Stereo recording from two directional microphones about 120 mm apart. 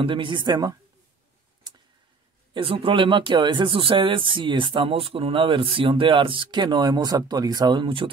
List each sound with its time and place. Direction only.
0.0 s speech: 45° right (ahead or behind)
2.5 s speech: 45° right (ahead or behind)